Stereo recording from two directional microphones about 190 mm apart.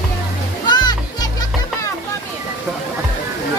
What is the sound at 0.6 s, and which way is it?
Music, 20° left (ahead or behind).